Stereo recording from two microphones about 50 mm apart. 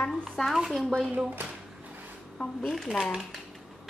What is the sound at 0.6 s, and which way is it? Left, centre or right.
Speech, centre.